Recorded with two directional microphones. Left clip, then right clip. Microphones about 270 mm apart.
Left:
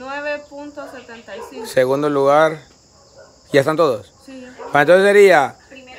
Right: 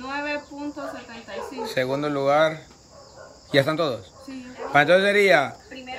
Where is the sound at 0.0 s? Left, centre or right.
Centre.